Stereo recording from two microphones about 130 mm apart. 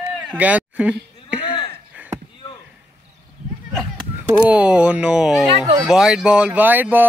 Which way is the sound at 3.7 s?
10° right (ahead or behind).